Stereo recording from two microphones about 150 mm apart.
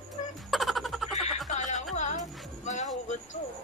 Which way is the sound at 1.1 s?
50° left (ahead or behind).